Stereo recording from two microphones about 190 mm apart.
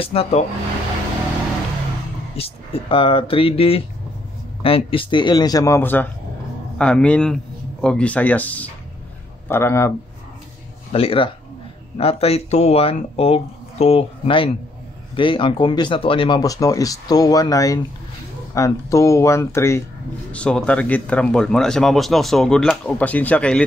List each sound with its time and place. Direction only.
0.0 s speech: 30° left (ahead or behind)
2.3 s speech: 30° left (ahead or behind); by 9.9 s 15° left (ahead or behind)
10.9 s speech: 30° left (ahead or behind); by 23.6 s 5° left (ahead or behind)